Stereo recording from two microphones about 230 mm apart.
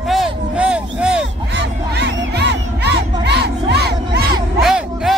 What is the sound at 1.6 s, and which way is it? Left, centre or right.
Crowd, right.